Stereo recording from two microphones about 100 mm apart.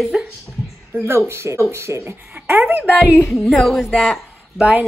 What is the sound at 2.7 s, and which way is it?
Speech, 15° right (ahead or behind).